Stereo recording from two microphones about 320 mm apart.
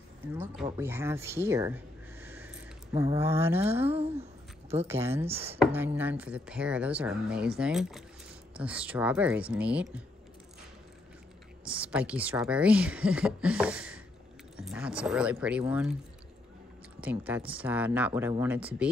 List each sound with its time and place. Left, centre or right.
0.3 s speech: centre
3.9 s a sound: centre
4.8 s speech: centre
5.2 s speech: centre
5.6 s a woman's voice: centre
11.6 s a woman's voice: centre
17.0 s a woman's voice: centre